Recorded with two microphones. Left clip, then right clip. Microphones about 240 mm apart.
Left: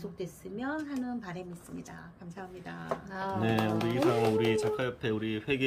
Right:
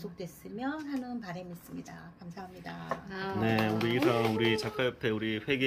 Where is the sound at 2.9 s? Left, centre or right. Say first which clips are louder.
Left 2 dB; left.